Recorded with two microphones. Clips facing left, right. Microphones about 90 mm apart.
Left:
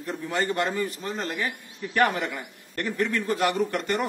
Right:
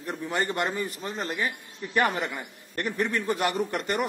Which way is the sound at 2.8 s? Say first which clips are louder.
Left 1 dB; 25° right (ahead or behind).